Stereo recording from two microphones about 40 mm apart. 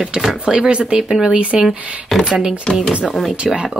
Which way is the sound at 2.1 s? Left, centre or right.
Centre.